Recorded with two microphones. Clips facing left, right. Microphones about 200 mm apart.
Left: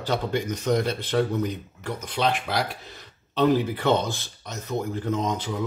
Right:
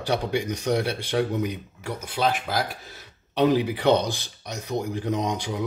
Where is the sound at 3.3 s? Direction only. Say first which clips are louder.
Even; 15° right (ahead or behind).